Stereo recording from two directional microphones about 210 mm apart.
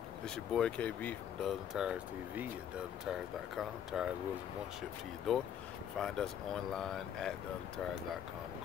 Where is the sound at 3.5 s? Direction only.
Centre (ahead or behind).